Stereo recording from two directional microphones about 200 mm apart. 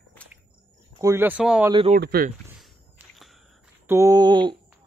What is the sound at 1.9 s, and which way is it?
Speech, 45° right (ahead or behind).